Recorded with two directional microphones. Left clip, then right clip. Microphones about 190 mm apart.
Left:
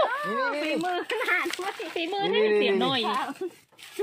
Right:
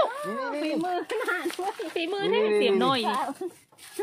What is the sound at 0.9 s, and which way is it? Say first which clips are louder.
Speech: left 2 dB; 35° right (ahead or behind).